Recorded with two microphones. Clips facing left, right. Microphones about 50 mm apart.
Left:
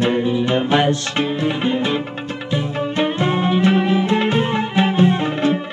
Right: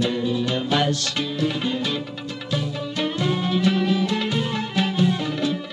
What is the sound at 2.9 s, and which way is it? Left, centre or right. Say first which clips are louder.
Music: left 5 dB; left.